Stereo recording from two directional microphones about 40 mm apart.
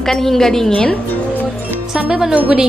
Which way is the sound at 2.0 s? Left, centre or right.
Centre.